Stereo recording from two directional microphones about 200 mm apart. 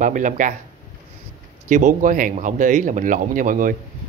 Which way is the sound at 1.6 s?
40° right (ahead or behind).